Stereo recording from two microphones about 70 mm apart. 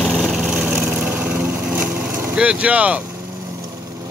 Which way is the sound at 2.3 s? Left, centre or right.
Centre.